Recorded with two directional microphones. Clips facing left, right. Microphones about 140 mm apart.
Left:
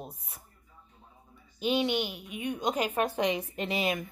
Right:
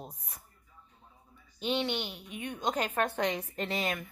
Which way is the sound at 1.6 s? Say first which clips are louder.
Left 4 dB; 10° left (ahead or behind).